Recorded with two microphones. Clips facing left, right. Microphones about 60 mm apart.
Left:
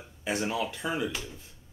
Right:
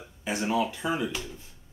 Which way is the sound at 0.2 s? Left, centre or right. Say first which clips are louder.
Right 3 dB; centre.